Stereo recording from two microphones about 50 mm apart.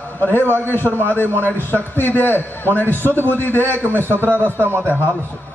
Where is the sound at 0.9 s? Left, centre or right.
Right.